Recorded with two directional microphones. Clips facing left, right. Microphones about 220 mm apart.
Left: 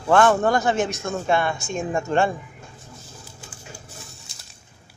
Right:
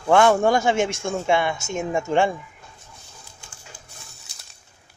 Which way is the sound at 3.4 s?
5° left (ahead or behind).